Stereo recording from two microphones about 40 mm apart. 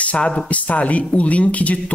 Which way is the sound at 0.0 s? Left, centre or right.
Left.